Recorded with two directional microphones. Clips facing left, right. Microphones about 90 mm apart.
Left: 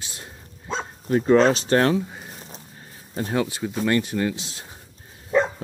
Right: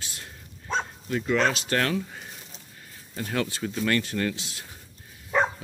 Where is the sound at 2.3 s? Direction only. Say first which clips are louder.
Left 5 dB; 35° left (ahead or behind); by 3.7 s 20° left (ahead or behind).